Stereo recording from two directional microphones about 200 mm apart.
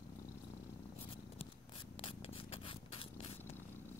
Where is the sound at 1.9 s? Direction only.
25° left (ahead or behind).